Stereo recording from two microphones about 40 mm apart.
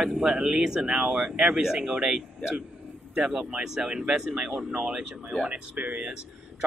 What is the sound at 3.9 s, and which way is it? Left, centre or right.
Speech, right.